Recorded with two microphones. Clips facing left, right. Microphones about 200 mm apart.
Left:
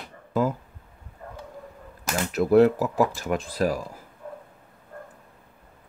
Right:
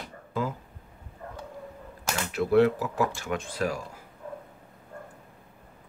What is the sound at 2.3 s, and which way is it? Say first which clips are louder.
Speech: left 4 dB; 40° left (ahead or behind).